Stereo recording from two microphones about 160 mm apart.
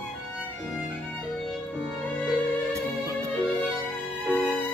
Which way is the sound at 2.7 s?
15° right (ahead or behind).